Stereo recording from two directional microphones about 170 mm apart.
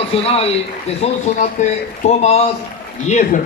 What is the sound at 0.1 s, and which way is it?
A man's voice, 35° left (ahead or behind).